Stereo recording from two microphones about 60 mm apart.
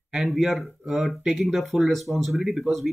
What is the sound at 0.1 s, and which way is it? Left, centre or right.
Speech, centre.